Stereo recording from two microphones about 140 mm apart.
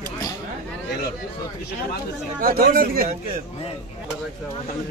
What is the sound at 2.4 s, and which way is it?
Speech, 90° right.